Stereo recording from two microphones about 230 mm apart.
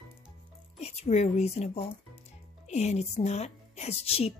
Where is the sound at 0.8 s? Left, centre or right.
Left.